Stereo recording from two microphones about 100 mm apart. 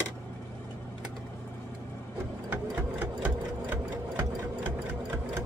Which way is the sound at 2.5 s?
15° right (ahead or behind).